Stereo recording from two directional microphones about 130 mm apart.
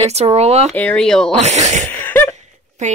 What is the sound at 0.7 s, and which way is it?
Speech, 10° left (ahead or behind).